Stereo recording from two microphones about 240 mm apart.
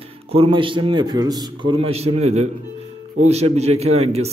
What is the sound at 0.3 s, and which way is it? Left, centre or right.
A man's voice, right.